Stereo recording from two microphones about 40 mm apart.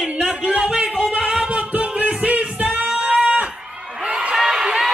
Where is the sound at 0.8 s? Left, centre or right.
Centre.